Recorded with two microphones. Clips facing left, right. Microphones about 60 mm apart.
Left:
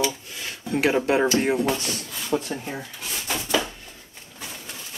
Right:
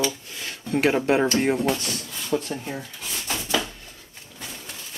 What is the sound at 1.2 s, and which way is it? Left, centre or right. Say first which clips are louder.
Speech: even; centre.